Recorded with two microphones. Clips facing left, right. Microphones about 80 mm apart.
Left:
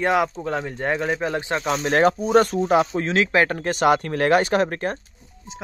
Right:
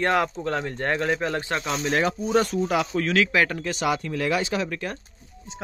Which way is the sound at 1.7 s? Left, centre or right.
Left.